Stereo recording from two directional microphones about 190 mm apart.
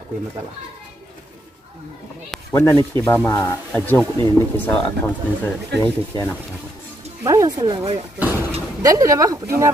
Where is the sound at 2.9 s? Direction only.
10° left (ahead or behind).